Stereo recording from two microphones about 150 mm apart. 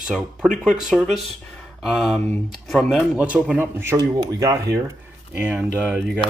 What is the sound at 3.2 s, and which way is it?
Speech, 10° right (ahead or behind).